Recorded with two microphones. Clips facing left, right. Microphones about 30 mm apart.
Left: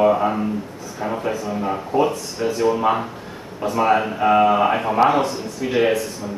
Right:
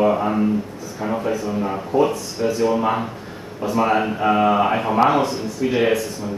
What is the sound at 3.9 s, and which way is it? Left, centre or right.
A man's voice, centre.